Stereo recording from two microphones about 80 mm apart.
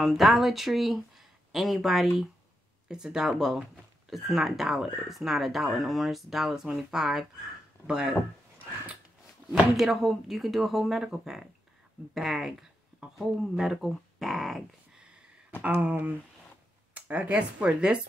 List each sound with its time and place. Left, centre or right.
0.0 s speech: centre
9.5 s speech: centre
15.6 s speech: centre